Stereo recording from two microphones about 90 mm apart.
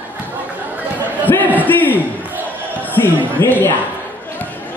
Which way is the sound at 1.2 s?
20° left (ahead or behind).